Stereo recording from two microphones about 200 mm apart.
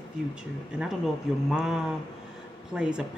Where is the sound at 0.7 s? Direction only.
Centre (ahead or behind).